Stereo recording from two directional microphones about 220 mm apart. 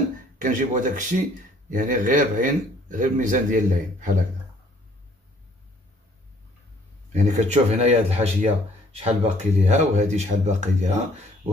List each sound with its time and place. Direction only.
0.4 s speech: 35° right (ahead or behind)
7.1 s speech: 35° right (ahead or behind)